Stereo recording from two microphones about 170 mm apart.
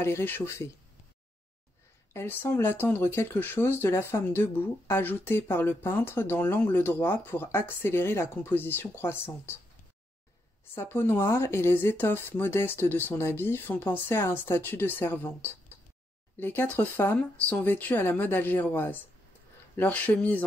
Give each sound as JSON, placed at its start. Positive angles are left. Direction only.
{"t": 0.0, "sound": "speech", "side_deg": 15}
{"t": 2.1, "sound": "speech", "side_deg": 15}
{"t": 10.7, "sound": "speech", "side_deg": 15}